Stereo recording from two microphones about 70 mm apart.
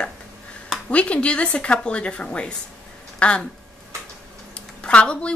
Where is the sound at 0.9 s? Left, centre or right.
Centre.